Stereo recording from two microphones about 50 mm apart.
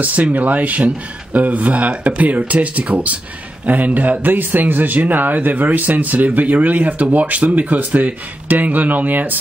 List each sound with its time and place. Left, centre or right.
0.0 s speech: right